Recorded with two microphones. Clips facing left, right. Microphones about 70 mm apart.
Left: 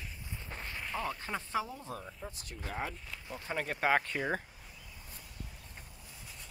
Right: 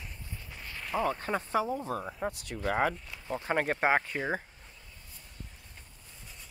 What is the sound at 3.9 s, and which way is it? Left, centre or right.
Speech, centre.